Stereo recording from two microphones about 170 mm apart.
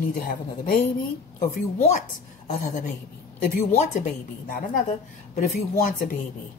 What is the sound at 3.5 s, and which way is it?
Speech, 50° left (ahead or behind).